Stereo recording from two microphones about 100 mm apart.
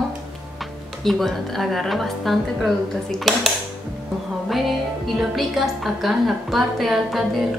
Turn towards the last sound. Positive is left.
turn(degrees=0)  # may be behind; listen again after turning